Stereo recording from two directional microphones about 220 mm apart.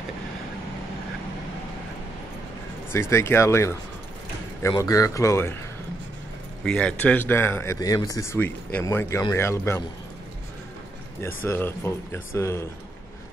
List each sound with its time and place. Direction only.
2.9 s speech: 10° left (ahead or behind)
6.6 s speech: 5° left (ahead or behind)
11.2 s speech: 10° left (ahead or behind)